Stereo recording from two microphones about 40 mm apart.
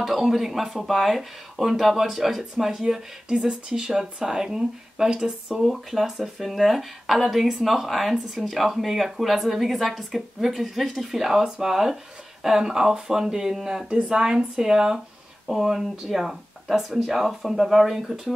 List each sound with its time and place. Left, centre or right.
0.0 s speech: centre
13.8 s speech: right